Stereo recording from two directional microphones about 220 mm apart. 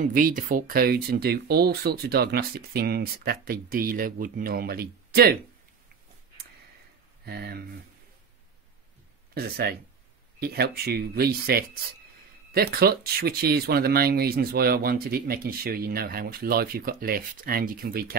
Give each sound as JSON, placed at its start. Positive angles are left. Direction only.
{"t": 0.0, "sound": "speech", "side_deg": -40}
{"t": 7.2, "sound": "speech", "side_deg": -45}
{"t": 9.3, "sound": "speech", "side_deg": -45}